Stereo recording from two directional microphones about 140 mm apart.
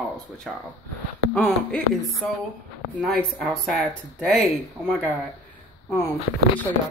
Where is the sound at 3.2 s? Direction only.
Centre (ahead or behind).